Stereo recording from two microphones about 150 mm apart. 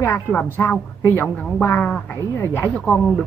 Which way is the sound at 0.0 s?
15° left (ahead or behind).